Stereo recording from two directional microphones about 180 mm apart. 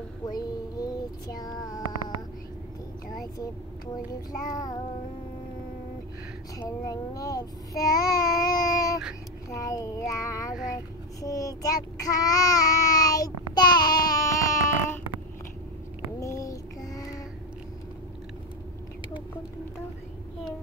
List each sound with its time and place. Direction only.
0.3 s child singing: 20° left (ahead or behind)
3.3 s child singing: 20° left (ahead or behind)
6.6 s child singing: 20° left (ahead or behind)
16.2 s child singing: 15° left (ahead or behind)